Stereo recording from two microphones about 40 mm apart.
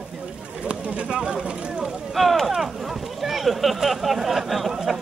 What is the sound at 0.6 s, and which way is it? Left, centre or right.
Speech, right.